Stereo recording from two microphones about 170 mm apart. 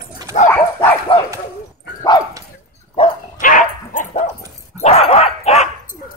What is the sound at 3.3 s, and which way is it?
Dog, 50° left (ahead or behind).